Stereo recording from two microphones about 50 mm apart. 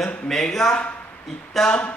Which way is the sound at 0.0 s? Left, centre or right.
Centre.